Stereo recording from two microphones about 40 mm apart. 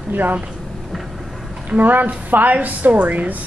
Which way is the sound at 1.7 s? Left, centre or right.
Right.